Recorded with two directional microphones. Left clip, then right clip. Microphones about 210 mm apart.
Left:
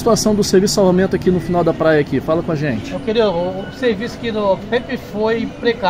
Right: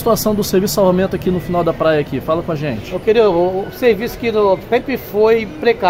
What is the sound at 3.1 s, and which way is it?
Speech, 45° right (ahead or behind).